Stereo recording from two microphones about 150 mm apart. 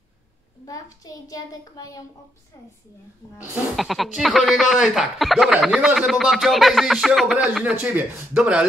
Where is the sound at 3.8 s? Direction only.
Centre (ahead or behind).